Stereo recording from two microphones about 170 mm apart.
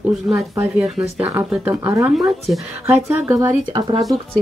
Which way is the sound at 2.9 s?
15° right (ahead or behind).